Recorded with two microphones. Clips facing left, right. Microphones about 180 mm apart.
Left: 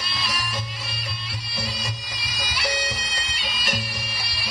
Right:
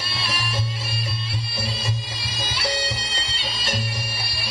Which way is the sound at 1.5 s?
25° right (ahead or behind).